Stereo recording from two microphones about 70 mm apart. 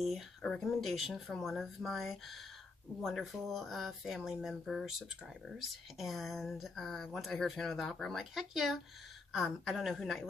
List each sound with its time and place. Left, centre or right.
0.0 s speech: centre